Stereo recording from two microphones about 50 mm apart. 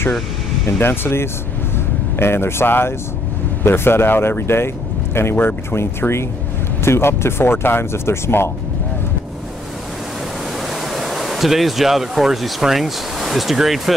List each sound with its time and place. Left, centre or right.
0.7 s speech: left
10.7 s speech: centre